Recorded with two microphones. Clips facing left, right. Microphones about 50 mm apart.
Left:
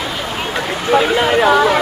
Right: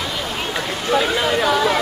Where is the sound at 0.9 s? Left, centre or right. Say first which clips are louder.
Left 5 dB; left.